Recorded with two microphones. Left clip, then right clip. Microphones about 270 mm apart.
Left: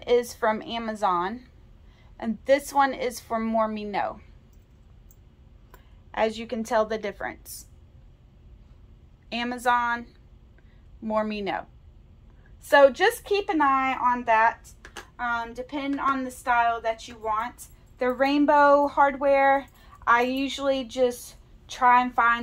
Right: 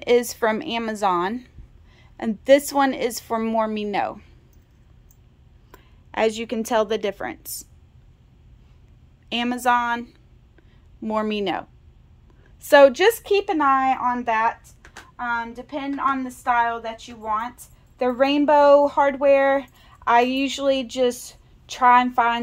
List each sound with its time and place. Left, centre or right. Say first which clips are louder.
0.0 s a woman's voice: right 4 dB; right
5.7 s speech: right 3 dB; right
9.3 s a woman's voice: right 4 dB; right
12.6 s a woman's voice: right 4 dB; right